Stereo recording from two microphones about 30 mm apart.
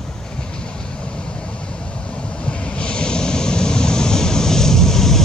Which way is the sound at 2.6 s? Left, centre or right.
Left.